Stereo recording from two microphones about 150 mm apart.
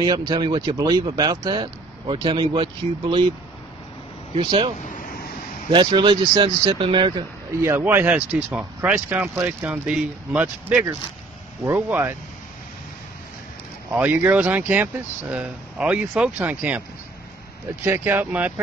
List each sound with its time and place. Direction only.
0.0 s speech: 25° right (ahead or behind)
4.4 s speech: 35° right (ahead or behind)
7.5 s speech: 15° right (ahead or behind)
13.9 s speech: 10° right (ahead or behind)
17.8 s speech: 15° right (ahead or behind)